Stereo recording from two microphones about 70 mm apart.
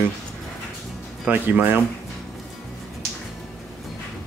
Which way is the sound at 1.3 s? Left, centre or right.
Right.